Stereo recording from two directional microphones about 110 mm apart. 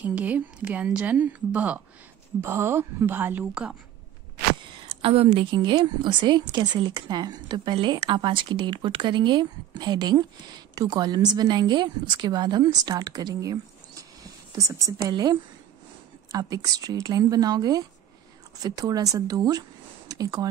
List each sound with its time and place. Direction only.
0.0 s a woman's voice: 15° right (ahead or behind)
5.0 s a woman's voice: 60° right (ahead or behind); by 20.4 s 35° right (ahead or behind)